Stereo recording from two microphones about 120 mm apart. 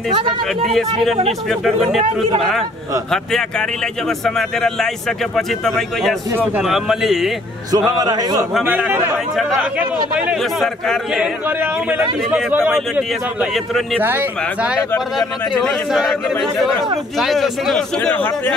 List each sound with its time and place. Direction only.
0.1 s speech: 50° right (ahead or behind)
1.5 s speech: centre (ahead or behind)
7.7 s a man's voice: 35° right (ahead or behind)
8.6 s speech: 15° right (ahead or behind)
10.4 s speech: centre (ahead or behind)
11.1 s speech: 15° right (ahead or behind)
14.0 s speech: 15° right (ahead or behind)
17.2 s speech: centre (ahead or behind)
18.1 s a man's voice: 15° left (ahead or behind)